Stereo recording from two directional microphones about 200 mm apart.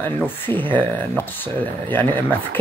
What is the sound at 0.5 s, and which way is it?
Speech, 10° left (ahead or behind).